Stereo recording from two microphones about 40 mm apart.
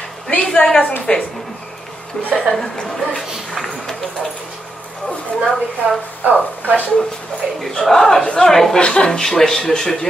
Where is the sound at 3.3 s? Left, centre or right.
Centre.